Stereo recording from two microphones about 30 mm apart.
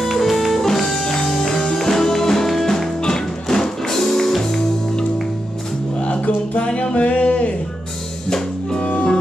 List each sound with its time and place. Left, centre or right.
0.0 s music: centre
5.9 s music: left
8.8 s music: left